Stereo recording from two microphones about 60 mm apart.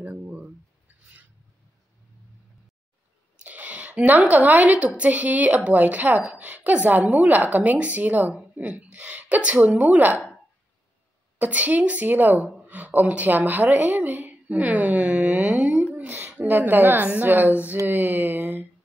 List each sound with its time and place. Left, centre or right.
0.2 s a sound: right
3.4 s a woman's voice: right
11.3 s a woman's voice: right